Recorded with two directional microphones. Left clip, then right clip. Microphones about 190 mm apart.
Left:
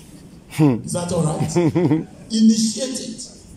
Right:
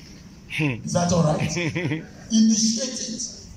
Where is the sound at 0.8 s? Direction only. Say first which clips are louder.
Right 1 dB; 25° left (ahead or behind).